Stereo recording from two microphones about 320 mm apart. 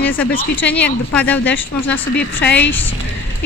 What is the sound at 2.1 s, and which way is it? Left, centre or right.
Speech, left.